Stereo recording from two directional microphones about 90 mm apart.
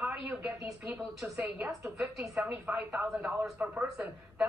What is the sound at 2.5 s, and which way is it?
A man's voice, 20° right (ahead or behind).